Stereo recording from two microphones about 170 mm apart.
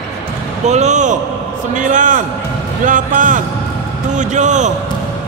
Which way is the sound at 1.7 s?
50° right (ahead or behind).